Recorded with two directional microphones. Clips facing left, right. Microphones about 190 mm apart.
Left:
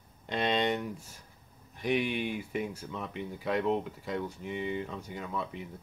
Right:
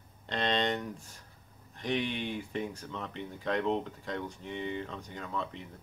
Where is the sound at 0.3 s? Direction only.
10° left (ahead or behind).